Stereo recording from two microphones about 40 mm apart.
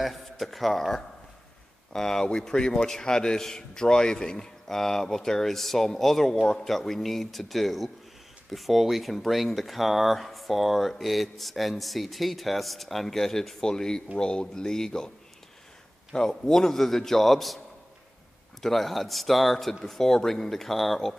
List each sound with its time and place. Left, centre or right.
0.0 s a man's voice: centre
6.4 s a man's voice: centre
6.7 s a man's voice: centre
16.1 s a man's voice: centre
18.6 s speech: centre